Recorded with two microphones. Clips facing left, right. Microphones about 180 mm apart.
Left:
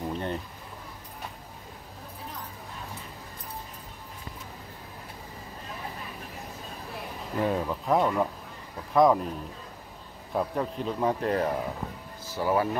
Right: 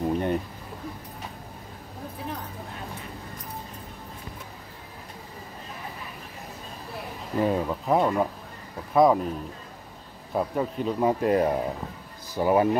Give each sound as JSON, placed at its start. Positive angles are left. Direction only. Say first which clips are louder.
{"t": 0.1, "sound": "a sound", "louder": "right 7 dB", "side_deg": -15}
{"t": 7.3, "sound": "speech", "louder": "right 3 dB", "side_deg": -5}
{"t": 10.3, "sound": "speech", "louder": "right 2 dB", "side_deg": -5}